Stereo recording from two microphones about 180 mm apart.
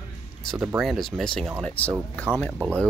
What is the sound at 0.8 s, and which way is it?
Speech, centre (ahead or behind).